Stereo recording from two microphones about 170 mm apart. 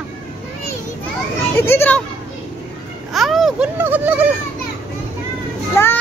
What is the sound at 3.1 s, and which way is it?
Children playing, centre (ahead or behind).